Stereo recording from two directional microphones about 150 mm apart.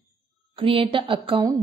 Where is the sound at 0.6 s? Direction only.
35° right (ahead or behind).